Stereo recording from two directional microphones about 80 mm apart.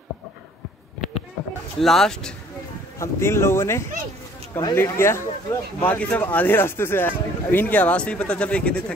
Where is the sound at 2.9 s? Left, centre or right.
Left.